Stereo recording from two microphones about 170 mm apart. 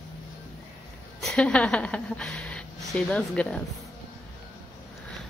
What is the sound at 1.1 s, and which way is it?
Speech, 5° left (ahead or behind).